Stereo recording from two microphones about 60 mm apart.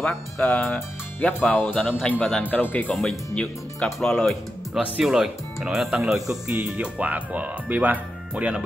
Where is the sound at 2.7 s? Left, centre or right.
Left.